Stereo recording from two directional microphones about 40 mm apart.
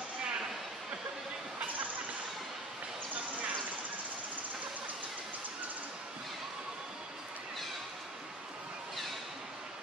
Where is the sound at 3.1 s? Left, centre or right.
Right.